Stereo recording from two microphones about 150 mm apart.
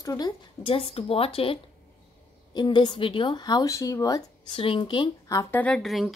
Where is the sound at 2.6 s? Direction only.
30° left (ahead or behind).